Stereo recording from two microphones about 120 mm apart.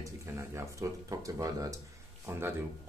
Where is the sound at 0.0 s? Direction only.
25° right (ahead or behind).